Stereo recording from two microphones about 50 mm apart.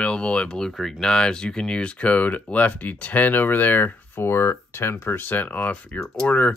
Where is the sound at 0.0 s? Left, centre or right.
Left.